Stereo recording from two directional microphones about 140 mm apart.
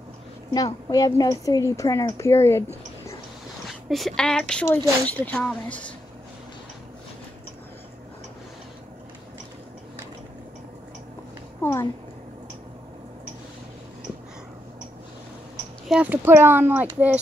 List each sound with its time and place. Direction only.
0.5 s a woman's voice: 25° left (ahead or behind)
3.9 s speech: 5° left (ahead or behind)
11.6 s a sound: 20° left (ahead or behind)
15.9 s speech: 10° right (ahead or behind)